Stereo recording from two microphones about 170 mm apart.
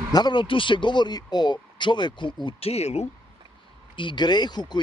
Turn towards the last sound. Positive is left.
turn(degrees=25)  # may be behind; listen again after turning